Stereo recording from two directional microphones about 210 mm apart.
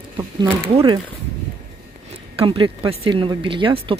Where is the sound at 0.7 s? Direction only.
25° right (ahead or behind).